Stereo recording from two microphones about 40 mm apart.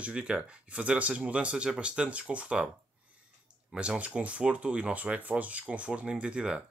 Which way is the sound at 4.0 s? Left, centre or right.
Right.